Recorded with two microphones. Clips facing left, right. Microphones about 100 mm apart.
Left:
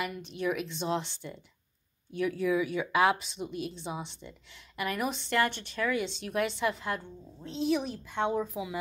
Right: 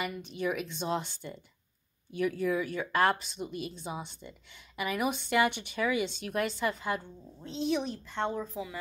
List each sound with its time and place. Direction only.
0.0 s speech: centre (ahead or behind)